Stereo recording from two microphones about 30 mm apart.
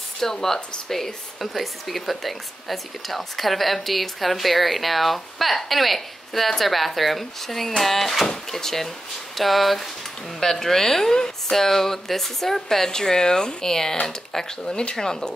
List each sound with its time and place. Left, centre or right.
0.2 s speech: centre
10.4 s speech: centre; by 15.0 s left
15.0 s speech: centre